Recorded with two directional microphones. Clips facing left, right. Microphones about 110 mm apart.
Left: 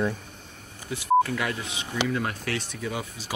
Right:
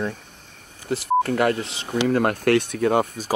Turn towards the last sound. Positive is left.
turn(degrees=-60)  # may be behind; listen again after turning